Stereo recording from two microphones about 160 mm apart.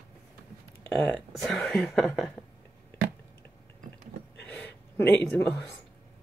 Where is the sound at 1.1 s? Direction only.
Centre (ahead or behind).